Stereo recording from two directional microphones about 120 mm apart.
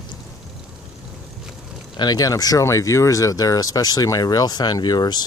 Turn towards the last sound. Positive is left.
turn(degrees=35)  # may be behind; listen again after turning